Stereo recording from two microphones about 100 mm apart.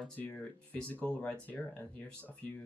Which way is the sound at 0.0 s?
15° left (ahead or behind).